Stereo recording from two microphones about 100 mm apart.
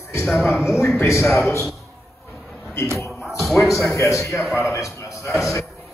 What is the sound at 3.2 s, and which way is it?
Speech, centre (ahead or behind).